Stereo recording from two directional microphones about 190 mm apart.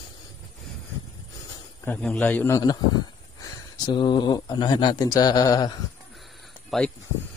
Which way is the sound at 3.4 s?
25° left (ahead or behind).